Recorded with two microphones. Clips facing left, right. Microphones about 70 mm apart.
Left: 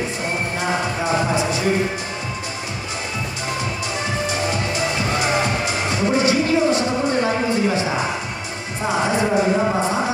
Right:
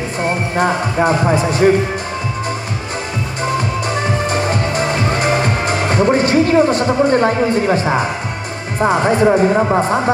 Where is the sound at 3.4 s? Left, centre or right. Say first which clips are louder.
Right 9 dB; right.